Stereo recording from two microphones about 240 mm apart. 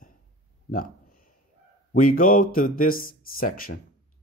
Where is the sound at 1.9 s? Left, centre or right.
Left.